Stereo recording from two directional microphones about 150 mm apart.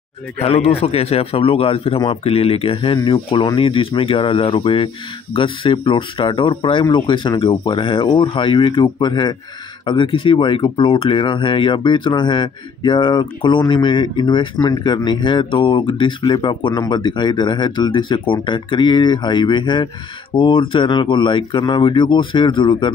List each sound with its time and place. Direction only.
0.4 s speech: 40° left (ahead or behind)